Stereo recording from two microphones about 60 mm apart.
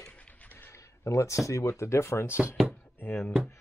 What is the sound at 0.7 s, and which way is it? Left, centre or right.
Speech, left.